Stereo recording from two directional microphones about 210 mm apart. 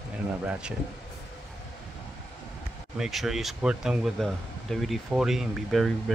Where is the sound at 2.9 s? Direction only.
Centre (ahead or behind).